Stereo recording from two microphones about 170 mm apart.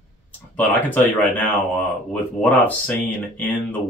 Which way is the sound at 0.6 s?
10° left (ahead or behind).